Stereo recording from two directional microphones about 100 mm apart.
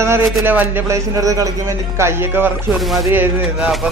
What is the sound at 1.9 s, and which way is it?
Speech, 25° right (ahead or behind).